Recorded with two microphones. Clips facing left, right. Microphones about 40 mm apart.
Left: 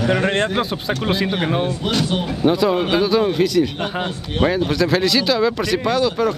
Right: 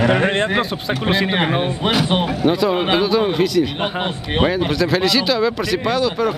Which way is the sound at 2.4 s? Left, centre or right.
Centre.